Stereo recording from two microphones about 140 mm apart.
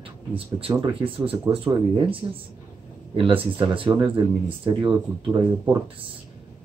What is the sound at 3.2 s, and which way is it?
Speech, 35° right (ahead or behind).